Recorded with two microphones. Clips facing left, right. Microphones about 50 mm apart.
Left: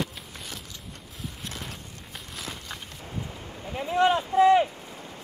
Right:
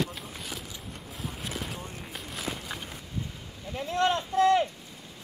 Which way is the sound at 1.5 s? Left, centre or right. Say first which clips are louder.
Right 4 dB; centre.